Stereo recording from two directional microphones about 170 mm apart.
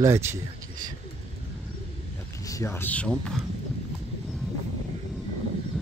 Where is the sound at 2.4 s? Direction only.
20° left (ahead or behind).